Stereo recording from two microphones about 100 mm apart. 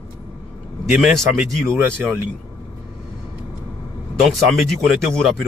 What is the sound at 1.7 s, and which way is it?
Speech, 20° right (ahead or behind).